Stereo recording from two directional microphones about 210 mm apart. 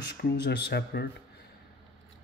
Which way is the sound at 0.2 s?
50° left (ahead or behind).